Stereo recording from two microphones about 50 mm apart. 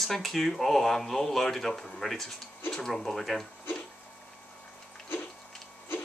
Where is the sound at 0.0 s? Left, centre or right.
Centre.